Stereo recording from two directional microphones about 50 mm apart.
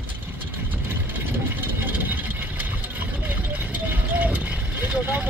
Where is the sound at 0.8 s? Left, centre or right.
Right.